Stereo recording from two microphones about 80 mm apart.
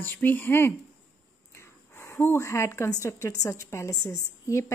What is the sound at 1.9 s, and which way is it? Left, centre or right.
A woman's voice, left.